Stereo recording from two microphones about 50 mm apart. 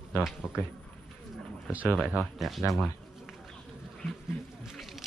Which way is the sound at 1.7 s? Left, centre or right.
Right.